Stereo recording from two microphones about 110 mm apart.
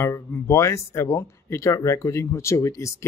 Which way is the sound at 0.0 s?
30° left (ahead or behind).